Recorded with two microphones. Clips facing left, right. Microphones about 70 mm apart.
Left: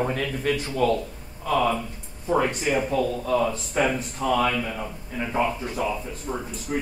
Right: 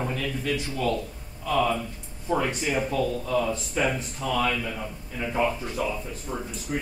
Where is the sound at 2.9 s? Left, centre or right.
Left.